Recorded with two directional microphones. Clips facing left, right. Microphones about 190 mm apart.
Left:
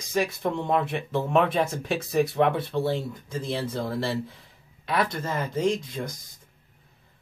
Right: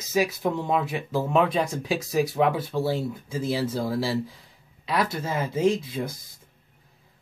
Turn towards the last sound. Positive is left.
turn(degrees=-5)  # may be behind; listen again after turning